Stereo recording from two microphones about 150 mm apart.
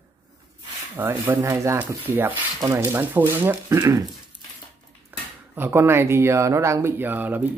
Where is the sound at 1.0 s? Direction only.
15° right (ahead or behind).